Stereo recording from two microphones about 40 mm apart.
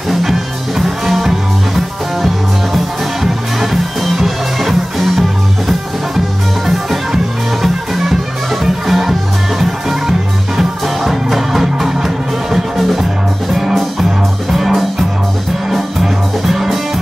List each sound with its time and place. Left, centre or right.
0.1 s music: centre
4.0 s music: centre